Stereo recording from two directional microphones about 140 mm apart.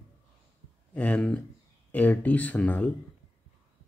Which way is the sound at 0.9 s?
10° left (ahead or behind).